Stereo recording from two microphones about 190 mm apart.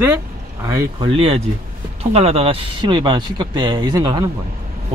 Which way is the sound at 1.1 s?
30° right (ahead or behind).